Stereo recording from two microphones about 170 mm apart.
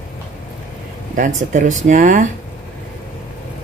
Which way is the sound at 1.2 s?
50° right (ahead or behind).